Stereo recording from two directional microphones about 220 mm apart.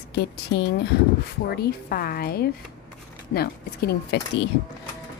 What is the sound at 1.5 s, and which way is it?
A woman's voice, 45° left (ahead or behind).